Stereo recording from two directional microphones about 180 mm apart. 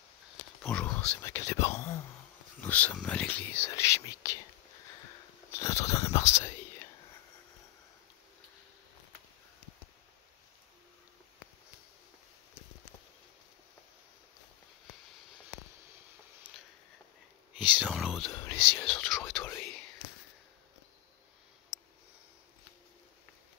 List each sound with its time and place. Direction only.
0.6 s speech: 5° left (ahead or behind)
5.5 s speech: 15° left (ahead or behind)
16.5 s a sound: 5° right (ahead or behind)
17.6 s speech: 5° right (ahead or behind)